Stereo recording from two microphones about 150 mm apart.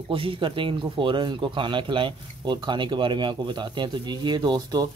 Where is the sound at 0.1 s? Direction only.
35° right (ahead or behind).